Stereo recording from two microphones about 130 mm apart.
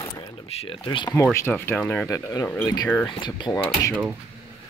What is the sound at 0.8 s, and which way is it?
Speech, 30° left (ahead or behind).